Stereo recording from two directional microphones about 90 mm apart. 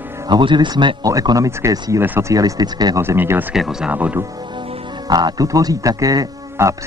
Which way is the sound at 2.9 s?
25° right (ahead or behind).